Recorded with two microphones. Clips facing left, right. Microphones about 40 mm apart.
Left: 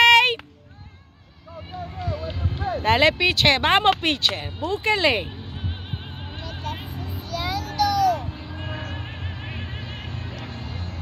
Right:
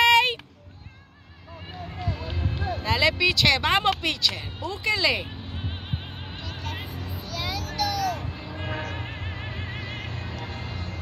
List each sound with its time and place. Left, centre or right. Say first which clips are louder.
0.0 s a sound: left 4 dB; left
2.0 s a sound: left 2 dB; centre
2.8 s speech: left 4 dB; left
6.7 s music: left 2 dB; centre
7.7 s music: left 7 dB; centre
8.9 s music: even; centre